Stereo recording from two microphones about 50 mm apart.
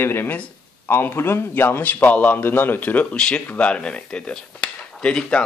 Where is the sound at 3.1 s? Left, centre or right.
Centre.